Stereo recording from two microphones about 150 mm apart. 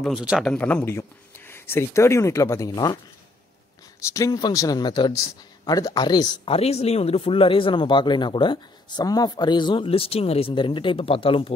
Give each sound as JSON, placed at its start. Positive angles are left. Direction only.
{"t": 0.0, "sound": "speech", "side_deg": -5}
{"t": 0.5, "sound": "speech", "side_deg": 10}
{"t": 4.0, "sound": "speech", "side_deg": 20}
{"t": 6.5, "sound": "speech", "side_deg": 45}